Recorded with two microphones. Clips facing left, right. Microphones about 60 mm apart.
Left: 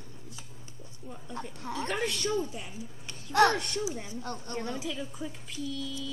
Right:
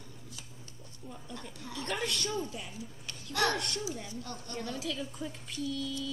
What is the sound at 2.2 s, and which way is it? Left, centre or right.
Speech, centre.